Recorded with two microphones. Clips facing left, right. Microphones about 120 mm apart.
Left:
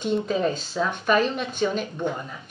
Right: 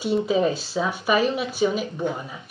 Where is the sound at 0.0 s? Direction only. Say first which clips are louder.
Right 2 dB; 5° right (ahead or behind).